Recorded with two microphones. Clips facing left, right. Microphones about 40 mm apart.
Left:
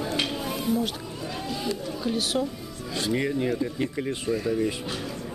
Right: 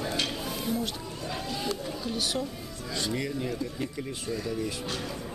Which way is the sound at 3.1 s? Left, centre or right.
Left.